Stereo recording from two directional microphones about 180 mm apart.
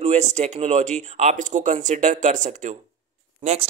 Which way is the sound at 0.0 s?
40° right (ahead or behind).